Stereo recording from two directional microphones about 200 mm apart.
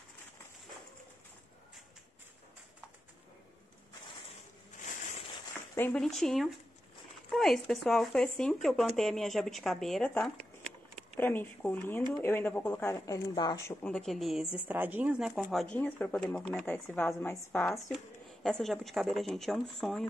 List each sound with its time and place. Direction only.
5.8 s a woman's voice: 5° left (ahead or behind)
13.8 s a woman's voice: centre (ahead or behind)